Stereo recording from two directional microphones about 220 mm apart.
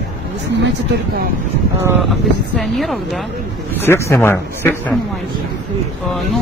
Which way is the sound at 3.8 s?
10° left (ahead or behind).